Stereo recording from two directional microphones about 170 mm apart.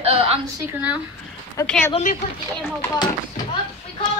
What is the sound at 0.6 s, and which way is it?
Speech, 10° right (ahead or behind).